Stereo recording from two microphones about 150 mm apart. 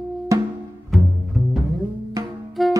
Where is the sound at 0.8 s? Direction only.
Centre (ahead or behind).